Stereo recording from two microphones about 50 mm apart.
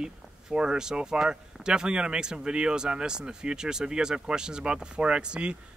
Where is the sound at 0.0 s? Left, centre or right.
Centre.